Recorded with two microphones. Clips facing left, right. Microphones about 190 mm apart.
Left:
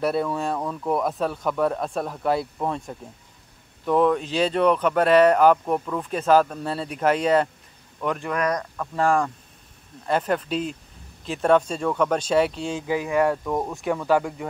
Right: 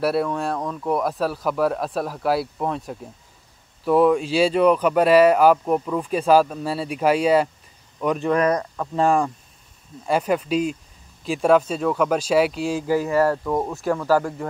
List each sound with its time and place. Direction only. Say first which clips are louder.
0.0 s speech: right 2 dB; 5° right (ahead or behind)
8.3 s speech: right 7 dB; 30° right (ahead or behind); by 14.5 s centre (ahead or behind)